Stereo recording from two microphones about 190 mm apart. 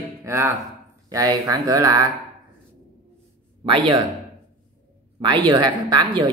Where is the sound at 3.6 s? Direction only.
25° right (ahead or behind).